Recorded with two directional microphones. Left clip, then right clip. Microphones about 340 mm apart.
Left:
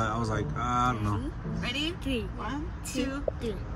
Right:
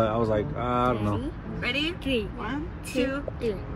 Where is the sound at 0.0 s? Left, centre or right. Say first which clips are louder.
Right 6 dB; centre.